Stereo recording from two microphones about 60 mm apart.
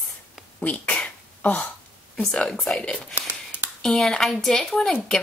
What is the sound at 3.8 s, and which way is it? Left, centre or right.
Speech, centre.